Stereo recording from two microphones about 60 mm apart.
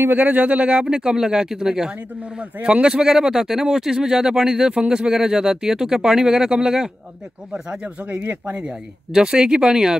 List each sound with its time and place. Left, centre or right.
0.0 s speech: right; by 2.0 s centre
2.0 s speech: right
8.5 s speech: centre